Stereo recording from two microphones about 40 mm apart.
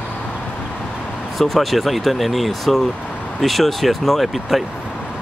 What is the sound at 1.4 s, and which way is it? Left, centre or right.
Speech, centre.